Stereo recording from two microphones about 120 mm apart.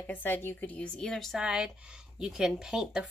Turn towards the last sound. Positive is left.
turn(degrees=-5)  # may be behind; listen again after turning